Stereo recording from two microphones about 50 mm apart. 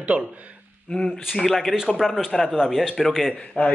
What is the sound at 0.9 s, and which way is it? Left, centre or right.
Speech, centre.